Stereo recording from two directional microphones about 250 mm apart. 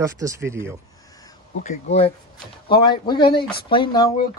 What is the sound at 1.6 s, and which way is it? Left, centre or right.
Speech, left.